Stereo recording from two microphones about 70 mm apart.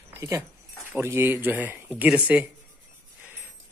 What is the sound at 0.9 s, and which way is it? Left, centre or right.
Speech, right.